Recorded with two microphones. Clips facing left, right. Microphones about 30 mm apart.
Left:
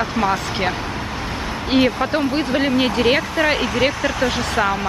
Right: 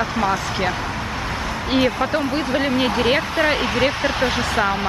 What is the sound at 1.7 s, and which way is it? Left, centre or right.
Speech, centre.